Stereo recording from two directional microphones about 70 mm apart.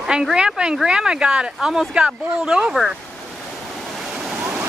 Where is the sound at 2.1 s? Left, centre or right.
Centre.